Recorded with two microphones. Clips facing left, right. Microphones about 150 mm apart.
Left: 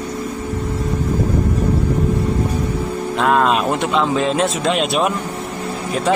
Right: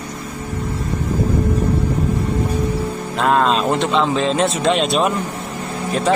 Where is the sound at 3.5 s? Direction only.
10° left (ahead or behind).